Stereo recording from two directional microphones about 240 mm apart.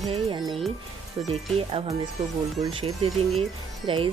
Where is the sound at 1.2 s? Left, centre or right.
Centre.